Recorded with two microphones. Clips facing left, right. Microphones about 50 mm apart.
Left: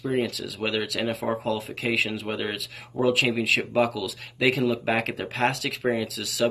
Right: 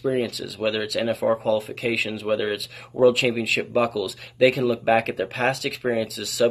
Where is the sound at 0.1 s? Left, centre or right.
Centre.